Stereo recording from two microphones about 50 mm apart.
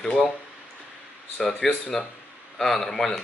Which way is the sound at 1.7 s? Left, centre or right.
Centre.